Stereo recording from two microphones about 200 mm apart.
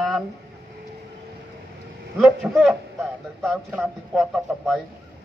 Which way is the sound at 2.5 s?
Centre (ahead or behind).